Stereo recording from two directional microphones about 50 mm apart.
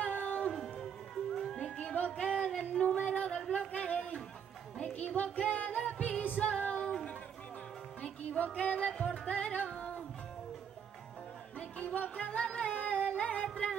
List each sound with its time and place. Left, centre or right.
0.0 s music: left
0.5 s music: centre
1.6 s music: centre
3.5 s a sound: left
4.7 s music: left
8.3 s music: left
11.5 s music: left